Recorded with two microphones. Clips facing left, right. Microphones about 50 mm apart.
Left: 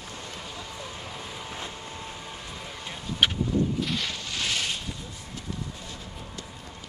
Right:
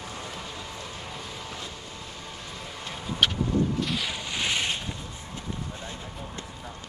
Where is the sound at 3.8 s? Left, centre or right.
Centre.